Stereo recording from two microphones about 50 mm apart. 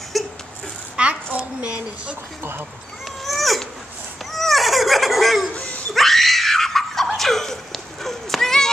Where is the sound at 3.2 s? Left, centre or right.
Centre.